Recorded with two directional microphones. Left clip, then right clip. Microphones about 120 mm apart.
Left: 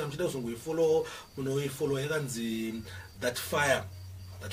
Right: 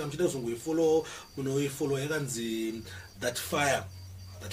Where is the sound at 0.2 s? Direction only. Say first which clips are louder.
Right 6 dB; 25° right (ahead or behind).